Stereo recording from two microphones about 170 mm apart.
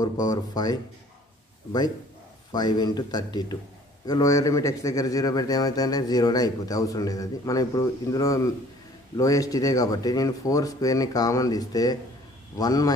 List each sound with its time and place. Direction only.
0.0 s a man's voice: 25° left (ahead or behind)
2.5 s a man's voice: 25° left (ahead or behind)